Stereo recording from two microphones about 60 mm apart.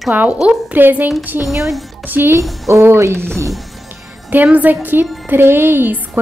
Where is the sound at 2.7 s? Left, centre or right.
Right.